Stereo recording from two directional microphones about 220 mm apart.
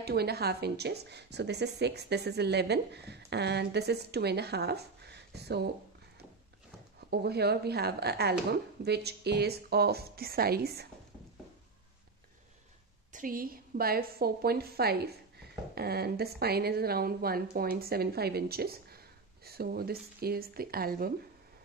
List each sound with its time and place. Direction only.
0.0 s a woman's voice: 45° right (ahead or behind)
7.1 s a woman's voice: 45° right (ahead or behind)
13.1 s a woman's voice: 40° right (ahead or behind)